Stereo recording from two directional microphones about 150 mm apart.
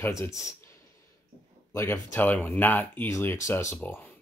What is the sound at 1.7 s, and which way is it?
Speech, 20° left (ahead or behind).